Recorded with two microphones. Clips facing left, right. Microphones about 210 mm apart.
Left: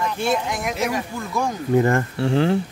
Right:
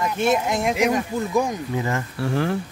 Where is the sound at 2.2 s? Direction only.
25° left (ahead or behind).